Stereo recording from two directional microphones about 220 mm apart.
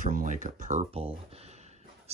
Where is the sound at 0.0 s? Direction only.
35° right (ahead or behind).